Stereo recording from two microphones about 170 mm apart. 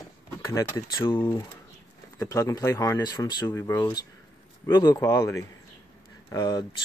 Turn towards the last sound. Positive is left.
turn(degrees=25)  # may be behind; listen again after turning